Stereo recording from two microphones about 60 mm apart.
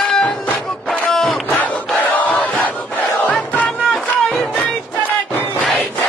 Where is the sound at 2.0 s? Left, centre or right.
Left.